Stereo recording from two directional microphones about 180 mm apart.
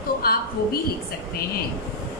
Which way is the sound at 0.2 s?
60° left (ahead or behind).